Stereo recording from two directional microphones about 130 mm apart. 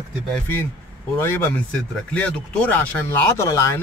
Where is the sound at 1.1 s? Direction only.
20° left (ahead or behind).